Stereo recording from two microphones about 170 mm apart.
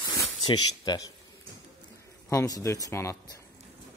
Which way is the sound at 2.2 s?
20° left (ahead or behind).